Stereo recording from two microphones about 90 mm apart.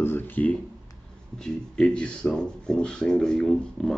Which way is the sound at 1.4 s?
5° left (ahead or behind).